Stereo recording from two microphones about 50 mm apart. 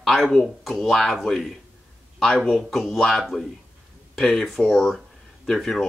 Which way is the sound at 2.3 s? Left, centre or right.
Centre.